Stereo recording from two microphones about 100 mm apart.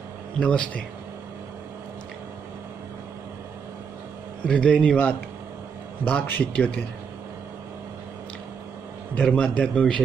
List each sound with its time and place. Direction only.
0.4 s a man's voice: 10° left (ahead or behind)
4.5 s a man's voice: 10° left (ahead or behind)
9.2 s a man's voice: 10° left (ahead or behind)